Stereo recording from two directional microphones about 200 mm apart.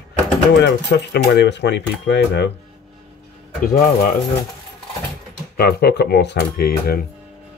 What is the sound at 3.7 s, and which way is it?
Speech, 45° left (ahead or behind).